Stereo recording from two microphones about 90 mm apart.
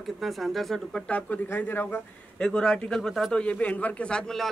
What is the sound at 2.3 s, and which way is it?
Speech, 10° left (ahead or behind).